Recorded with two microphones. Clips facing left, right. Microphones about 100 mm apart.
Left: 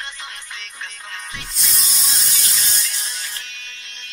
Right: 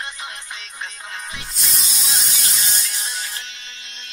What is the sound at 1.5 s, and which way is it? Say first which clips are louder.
Spray: even; centre (ahead or behind).